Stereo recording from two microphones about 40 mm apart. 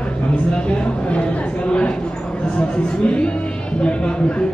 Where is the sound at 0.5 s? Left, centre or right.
Left.